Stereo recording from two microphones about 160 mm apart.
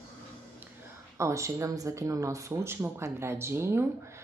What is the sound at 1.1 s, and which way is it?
Speech, 20° right (ahead or behind).